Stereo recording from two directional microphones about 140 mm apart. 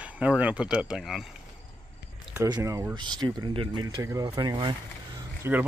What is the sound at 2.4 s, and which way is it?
Speech, 25° right (ahead or behind).